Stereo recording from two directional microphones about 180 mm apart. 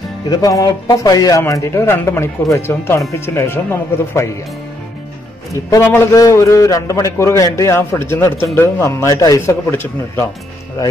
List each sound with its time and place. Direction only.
0.3 s a man's voice: 20° left (ahead or behind)
5.5 s a man's voice: 15° left (ahead or behind)